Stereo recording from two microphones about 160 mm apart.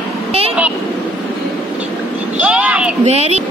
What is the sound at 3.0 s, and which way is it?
Speech, 40° right (ahead or behind).